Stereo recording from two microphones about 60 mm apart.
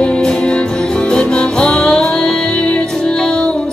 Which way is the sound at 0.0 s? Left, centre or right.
Centre.